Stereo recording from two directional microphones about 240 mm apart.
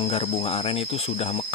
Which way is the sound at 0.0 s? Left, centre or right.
Left.